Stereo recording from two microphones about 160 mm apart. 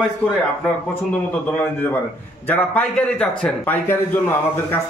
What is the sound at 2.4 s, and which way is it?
A man's voice, 10° left (ahead or behind).